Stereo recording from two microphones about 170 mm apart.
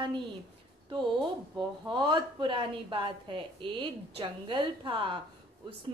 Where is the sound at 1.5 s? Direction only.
25° right (ahead or behind).